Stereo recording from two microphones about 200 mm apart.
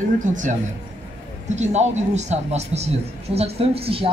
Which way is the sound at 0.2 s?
40° right (ahead or behind).